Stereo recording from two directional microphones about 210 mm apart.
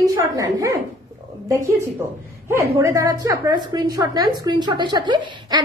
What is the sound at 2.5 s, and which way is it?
A woman's voice, 15° right (ahead or behind).